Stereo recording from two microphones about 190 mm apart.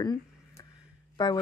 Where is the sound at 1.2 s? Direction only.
25° left (ahead or behind).